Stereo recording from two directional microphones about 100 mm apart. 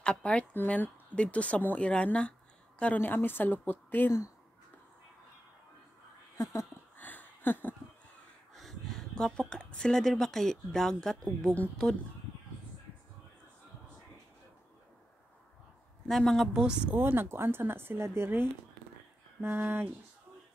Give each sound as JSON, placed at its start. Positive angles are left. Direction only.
{"t": 0.0, "sound": "a woman's voice", "side_deg": 10}
{"t": 6.3, "sound": "speech", "side_deg": 30}
{"t": 7.0, "sound": "a sound", "side_deg": 20}
{"t": 8.5, "sound": "speech", "side_deg": 5}
{"t": 16.1, "sound": "speech", "side_deg": 5}
{"t": 17.0, "sound": "speech", "side_deg": -20}